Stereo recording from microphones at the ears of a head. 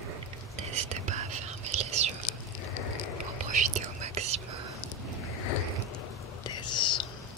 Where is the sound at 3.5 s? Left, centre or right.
Right.